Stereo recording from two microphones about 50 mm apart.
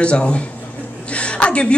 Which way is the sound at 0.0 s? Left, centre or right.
Left.